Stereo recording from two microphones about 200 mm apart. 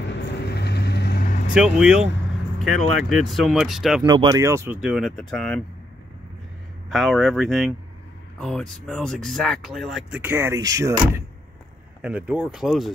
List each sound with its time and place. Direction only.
0.5 s vehicle: 55° left (ahead or behind)
1.5 s speech: 5° right (ahead or behind)
4.0 s speech: 20° right (ahead or behind)
4.8 s speech: centre (ahead or behind)
6.9 s speech: centre (ahead or behind)